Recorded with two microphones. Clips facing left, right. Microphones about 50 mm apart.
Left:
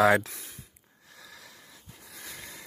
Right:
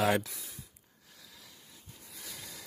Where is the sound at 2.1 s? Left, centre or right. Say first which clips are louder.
Left 4 dB; left.